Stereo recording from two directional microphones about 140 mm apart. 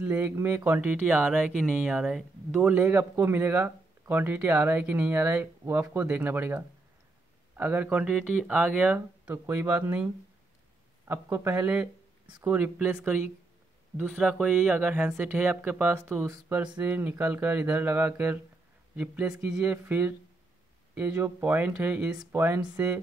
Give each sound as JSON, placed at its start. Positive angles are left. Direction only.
{"t": 0.0, "sound": "speech", "side_deg": -15}
{"t": 2.5, "sound": "speech", "side_deg": -15}
{"t": 11.1, "sound": "speech", "side_deg": -15}